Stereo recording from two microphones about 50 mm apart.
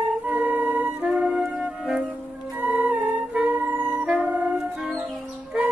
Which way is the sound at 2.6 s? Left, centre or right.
Right.